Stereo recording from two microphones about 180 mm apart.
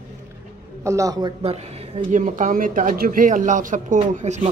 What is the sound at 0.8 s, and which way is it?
Speech, 20° right (ahead or behind).